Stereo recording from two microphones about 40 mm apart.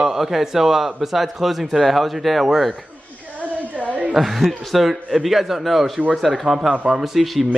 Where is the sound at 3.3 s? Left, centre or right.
Right.